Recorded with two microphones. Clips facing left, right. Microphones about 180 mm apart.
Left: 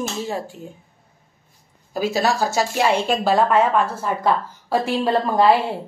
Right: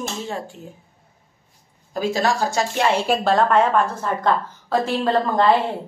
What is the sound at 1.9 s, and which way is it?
A woman's voice, 10° left (ahead or behind).